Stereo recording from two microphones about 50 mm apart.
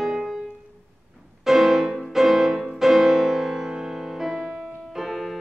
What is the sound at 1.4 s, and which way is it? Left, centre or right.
Music, centre.